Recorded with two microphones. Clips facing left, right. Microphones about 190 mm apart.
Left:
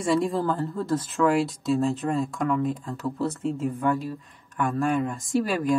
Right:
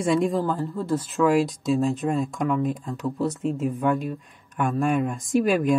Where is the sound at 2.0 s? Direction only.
Centre (ahead or behind).